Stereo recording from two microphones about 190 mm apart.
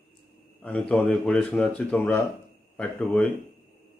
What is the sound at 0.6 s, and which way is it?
Speech, 5° left (ahead or behind).